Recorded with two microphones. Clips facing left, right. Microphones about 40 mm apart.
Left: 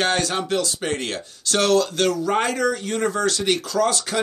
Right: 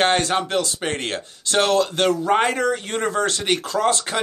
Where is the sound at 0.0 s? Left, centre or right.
Right.